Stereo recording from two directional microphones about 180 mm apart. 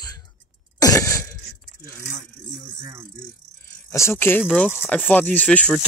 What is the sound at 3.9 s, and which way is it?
Speech, 15° left (ahead or behind).